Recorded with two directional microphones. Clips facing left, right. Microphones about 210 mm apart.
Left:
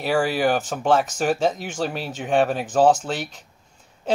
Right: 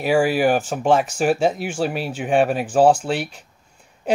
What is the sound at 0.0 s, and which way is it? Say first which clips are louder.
Speech: right 3 dB; 10° right (ahead or behind).